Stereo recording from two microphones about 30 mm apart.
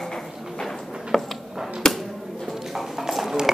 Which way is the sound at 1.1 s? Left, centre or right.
Centre.